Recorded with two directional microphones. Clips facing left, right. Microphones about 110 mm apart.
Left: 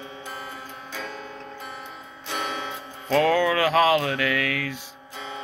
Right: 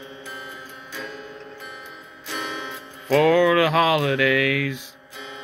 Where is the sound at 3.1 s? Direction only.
5° right (ahead or behind).